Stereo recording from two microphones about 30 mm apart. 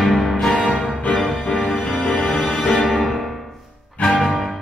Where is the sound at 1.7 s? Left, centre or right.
Left.